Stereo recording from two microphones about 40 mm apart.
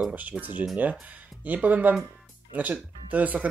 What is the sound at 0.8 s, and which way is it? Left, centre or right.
Speech, right.